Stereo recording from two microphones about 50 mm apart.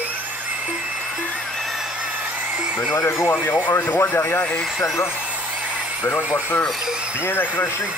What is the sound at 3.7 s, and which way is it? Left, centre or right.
Speech, left.